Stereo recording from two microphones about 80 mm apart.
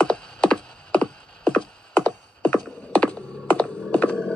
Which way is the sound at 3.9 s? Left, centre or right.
Centre.